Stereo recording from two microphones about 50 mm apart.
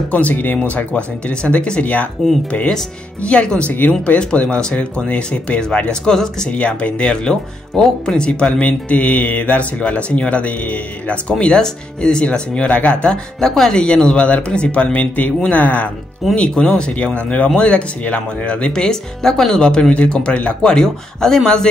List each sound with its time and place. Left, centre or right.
0.1 s speech: left
0.6 s speech: left
5.8 s speech: centre
6.5 s speech: left
8.3 s speech: left
16.3 s speech: centre